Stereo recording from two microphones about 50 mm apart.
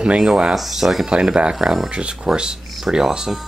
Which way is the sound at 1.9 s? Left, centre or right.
Centre.